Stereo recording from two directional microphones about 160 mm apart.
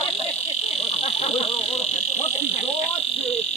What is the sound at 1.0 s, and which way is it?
Buzzer, 40° left (ahead or behind).